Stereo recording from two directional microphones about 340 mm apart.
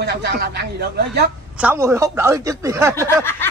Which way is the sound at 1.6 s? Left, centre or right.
Centre.